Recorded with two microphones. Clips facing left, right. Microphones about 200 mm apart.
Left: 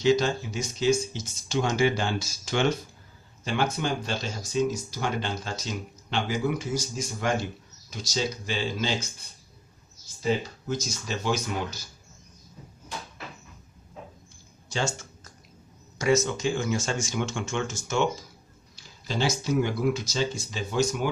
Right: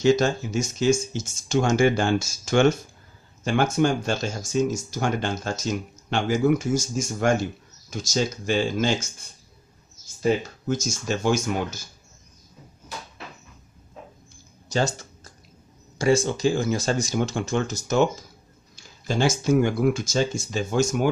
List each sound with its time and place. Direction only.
0.0 s speech: 45° right (ahead or behind)
10.2 s speech: 50° right (ahead or behind)
14.7 s a sound: 40° right (ahead or behind)
16.0 s speech: 30° right (ahead or behind)
18.8 s speech: 50° right (ahead or behind)